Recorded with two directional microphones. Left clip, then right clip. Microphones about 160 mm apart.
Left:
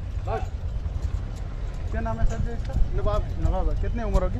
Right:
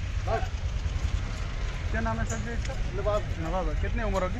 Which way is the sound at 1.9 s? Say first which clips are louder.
Right 1 dB; 55° left (ahead or behind).